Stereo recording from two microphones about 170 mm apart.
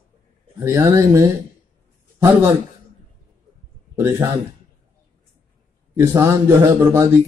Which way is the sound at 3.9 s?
15° right (ahead or behind).